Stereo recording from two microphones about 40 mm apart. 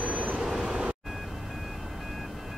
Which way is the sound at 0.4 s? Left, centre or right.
Centre.